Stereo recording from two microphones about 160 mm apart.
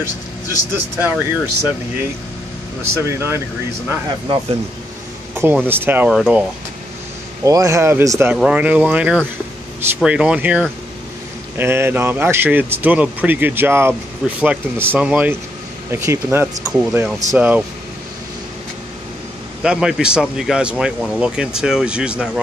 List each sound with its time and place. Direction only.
0.7 s speech: 10° right (ahead or behind)
3.0 s speech: 15° right (ahead or behind)
5.3 s speech: 15° right (ahead or behind)
6.1 s speech: centre (ahead or behind)
7.4 s speech: 20° right (ahead or behind)
8.4 s speech: 5° right (ahead or behind)
19.6 s speech: 5° right (ahead or behind)